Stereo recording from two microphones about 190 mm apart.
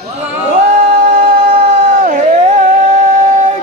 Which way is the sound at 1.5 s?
45° right (ahead or behind).